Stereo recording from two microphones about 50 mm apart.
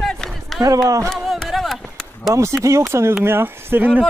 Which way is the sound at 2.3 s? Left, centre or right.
Right.